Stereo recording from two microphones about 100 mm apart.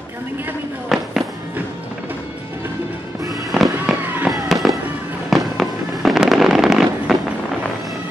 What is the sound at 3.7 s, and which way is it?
Fireworks, 15° right (ahead or behind).